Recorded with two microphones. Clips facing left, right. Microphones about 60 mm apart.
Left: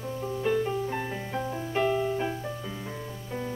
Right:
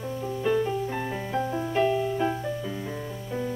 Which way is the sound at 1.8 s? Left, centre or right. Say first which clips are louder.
Right 1 dB; centre.